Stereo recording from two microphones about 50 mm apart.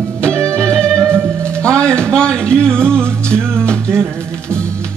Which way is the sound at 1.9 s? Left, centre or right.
Centre.